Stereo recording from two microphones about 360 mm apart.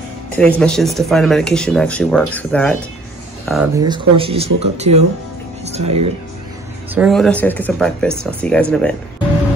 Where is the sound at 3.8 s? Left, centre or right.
Centre.